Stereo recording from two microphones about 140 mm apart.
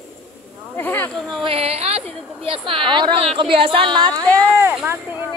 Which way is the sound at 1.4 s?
45° right (ahead or behind).